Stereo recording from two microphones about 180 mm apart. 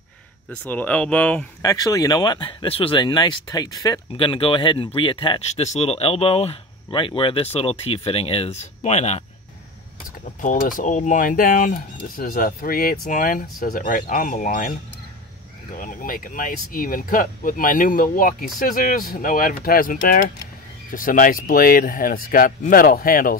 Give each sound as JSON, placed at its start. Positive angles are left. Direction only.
{"t": 0.5, "sound": "speech", "side_deg": 10}
{"t": 1.6, "sound": "speech", "side_deg": 20}
{"t": 10.2, "sound": "speech", "side_deg": 45}